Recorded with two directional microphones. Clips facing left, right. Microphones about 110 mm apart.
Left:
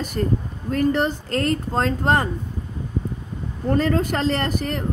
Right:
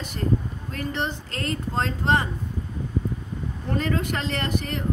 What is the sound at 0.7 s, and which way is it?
Speech, 45° left (ahead or behind).